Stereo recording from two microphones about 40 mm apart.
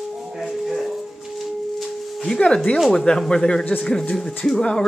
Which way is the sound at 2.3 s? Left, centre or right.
Left.